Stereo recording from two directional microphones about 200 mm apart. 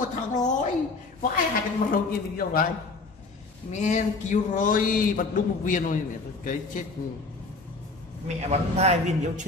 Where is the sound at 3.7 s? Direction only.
35° left (ahead or behind).